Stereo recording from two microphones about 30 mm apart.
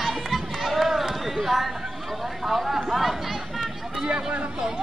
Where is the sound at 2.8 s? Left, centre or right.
Centre.